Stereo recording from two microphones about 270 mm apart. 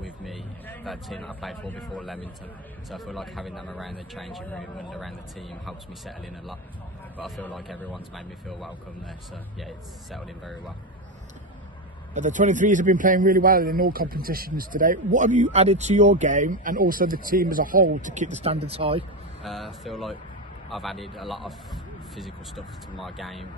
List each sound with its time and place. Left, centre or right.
0.2 s speech: centre
12.1 s a man's voice: right
19.4 s speech: centre